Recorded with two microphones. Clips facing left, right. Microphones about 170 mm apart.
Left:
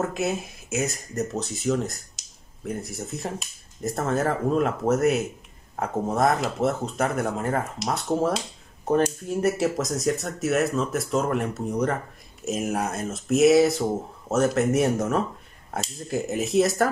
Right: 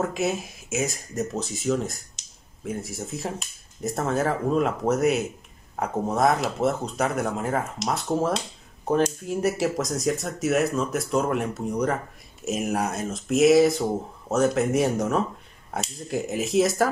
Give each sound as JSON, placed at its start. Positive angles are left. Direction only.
{"t": 0.0, "sound": "speech", "side_deg": 0}